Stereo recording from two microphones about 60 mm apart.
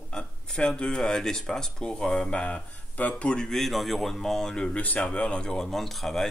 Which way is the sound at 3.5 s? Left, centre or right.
Centre.